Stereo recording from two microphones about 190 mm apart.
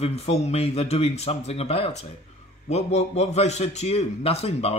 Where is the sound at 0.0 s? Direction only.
35° left (ahead or behind).